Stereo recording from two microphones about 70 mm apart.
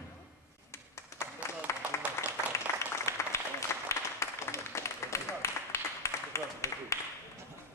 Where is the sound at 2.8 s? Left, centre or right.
Left.